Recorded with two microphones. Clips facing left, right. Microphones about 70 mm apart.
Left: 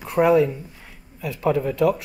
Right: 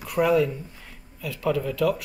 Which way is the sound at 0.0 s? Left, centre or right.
Left.